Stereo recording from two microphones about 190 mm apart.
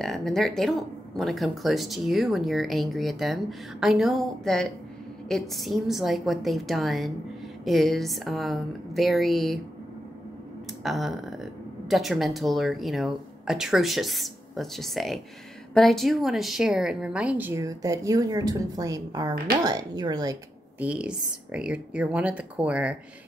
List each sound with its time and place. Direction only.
0.0 s speech: centre (ahead or behind)
10.8 s a woman's voice: centre (ahead or behind); by 20.3 s 20° right (ahead or behind)
20.8 s a woman's voice: 5° right (ahead or behind)